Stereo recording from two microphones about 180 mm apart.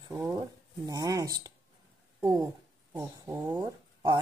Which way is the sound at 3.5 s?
20° right (ahead or behind).